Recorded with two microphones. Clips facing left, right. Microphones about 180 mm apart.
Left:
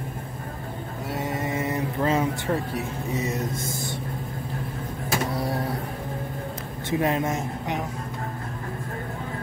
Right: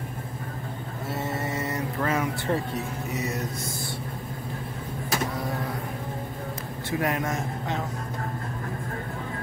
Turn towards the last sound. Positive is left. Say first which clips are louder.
# left 1 dB
turn(degrees=20)  # may be behind; listen again after turning